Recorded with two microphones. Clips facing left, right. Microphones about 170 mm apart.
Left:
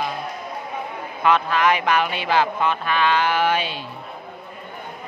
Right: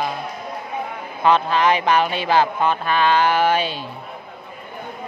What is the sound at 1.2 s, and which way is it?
Speech, 30° right (ahead or behind).